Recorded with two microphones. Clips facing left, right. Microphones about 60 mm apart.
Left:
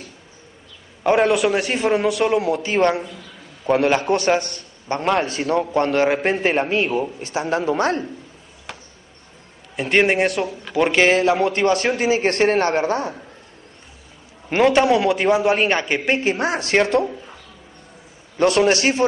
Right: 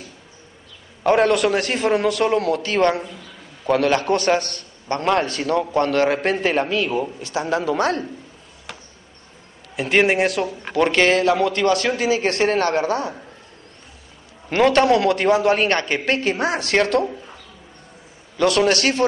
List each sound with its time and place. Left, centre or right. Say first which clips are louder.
1.0 s a man's voice: even; centre; by 6.1 s left
6.1 s a man's voice: left 1 dB; centre
6.4 s a man's voice: left 1 dB; left
9.8 s a man's voice: even; centre
10.7 s a man's voice: left 1 dB; centre; by 13.1 s left
14.5 s a man's voice: even; centre
17.0 s a sound: even; centre
18.6 s speech: left 1 dB; left